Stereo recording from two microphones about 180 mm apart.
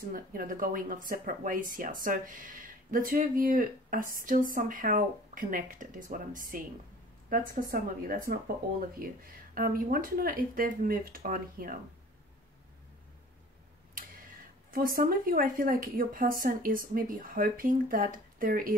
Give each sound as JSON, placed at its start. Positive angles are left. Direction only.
{"t": 0.1, "sound": "speech", "side_deg": -50}
{"t": 14.7, "sound": "speech", "side_deg": -50}